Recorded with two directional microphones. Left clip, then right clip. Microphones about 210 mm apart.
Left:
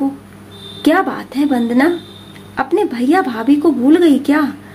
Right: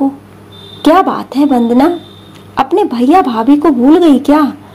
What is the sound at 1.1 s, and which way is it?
Speech, 15° right (ahead or behind).